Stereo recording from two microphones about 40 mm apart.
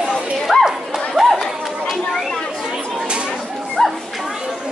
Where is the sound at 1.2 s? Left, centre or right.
Right.